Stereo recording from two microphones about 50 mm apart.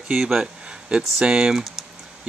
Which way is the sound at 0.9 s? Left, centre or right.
Right.